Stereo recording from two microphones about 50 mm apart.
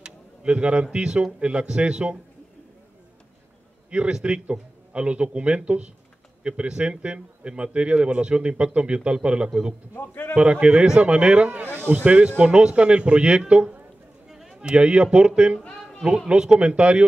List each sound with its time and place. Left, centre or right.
0.0 s a sound: centre
0.9 s a man's voice: centre
3.9 s a man's voice: right
9.9 s a man's voice: left
10.3 s a man's voice: right
11.6 s a man's voice: right
14.3 s a sound: centre
14.6 s a man's voice: centre